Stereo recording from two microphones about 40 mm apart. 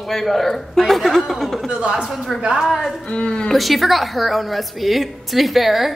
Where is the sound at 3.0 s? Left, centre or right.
Left.